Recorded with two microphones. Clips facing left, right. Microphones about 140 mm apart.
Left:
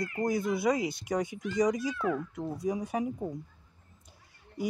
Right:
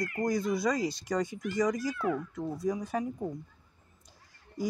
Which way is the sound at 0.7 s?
60° left (ahead or behind).